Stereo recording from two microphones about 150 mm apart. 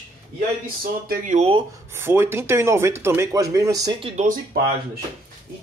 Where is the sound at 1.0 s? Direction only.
75° right (ahead or behind).